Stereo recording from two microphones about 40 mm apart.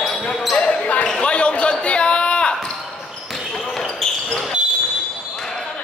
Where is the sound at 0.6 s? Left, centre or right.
Left.